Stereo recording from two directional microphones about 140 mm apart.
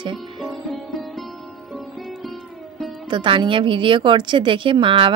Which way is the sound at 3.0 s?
35° right (ahead or behind).